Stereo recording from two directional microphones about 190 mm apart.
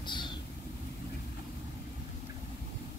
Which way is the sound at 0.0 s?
25° left (ahead or behind).